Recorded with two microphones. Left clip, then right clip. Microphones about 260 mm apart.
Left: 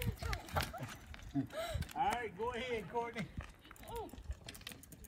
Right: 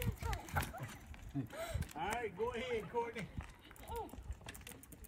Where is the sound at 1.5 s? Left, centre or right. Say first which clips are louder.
Left 3 dB; centre.